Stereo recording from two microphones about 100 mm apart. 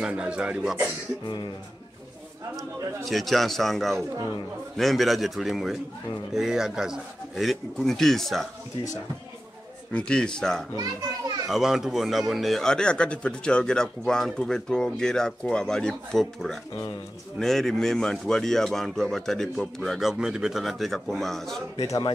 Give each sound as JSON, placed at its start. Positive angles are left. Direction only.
{"t": 0.0, "sound": "speech", "side_deg": -10}
{"t": 1.2, "sound": "speech", "side_deg": 50}
{"t": 3.1, "sound": "speech", "side_deg": 0}
{"t": 9.9, "sound": "speech", "side_deg": 10}
{"t": 11.4, "sound": "speech", "side_deg": -5}